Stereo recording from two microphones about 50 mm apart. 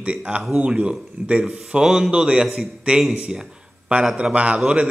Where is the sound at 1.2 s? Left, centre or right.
Right.